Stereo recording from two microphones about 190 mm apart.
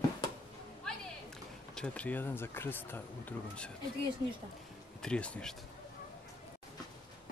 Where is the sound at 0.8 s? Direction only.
5° left (ahead or behind).